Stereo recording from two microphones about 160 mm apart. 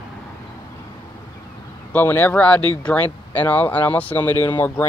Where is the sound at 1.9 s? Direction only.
10° left (ahead or behind).